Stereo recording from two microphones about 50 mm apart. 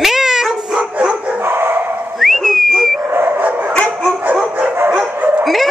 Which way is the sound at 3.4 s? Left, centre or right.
Right.